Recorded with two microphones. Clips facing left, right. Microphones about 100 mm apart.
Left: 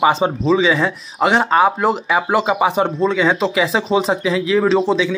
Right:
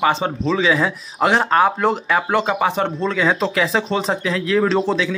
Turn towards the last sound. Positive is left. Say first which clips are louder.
# left 3 dB
turn(degrees=0)  # may be behind; listen again after turning